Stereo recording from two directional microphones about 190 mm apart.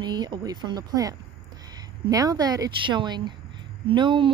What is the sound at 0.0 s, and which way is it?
A woman's voice, 20° right (ahead or behind).